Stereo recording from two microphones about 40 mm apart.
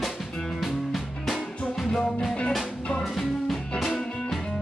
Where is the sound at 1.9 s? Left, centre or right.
Centre.